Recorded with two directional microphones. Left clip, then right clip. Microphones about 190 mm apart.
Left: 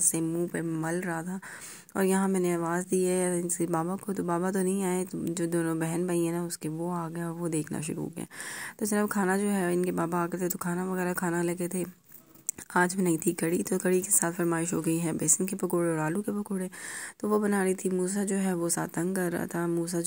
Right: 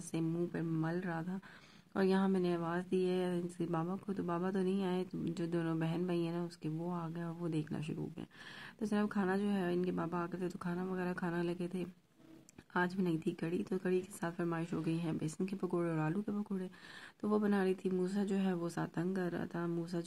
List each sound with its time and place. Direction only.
0.1 s speech: 20° left (ahead or behind)